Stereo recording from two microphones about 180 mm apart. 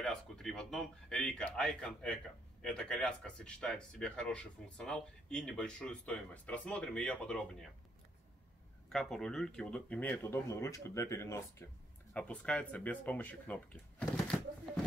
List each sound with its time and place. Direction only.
0.0 s speech: centre (ahead or behind)
8.8 s speech: 5° left (ahead or behind)